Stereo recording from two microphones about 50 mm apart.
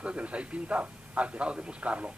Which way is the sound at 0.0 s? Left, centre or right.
Right.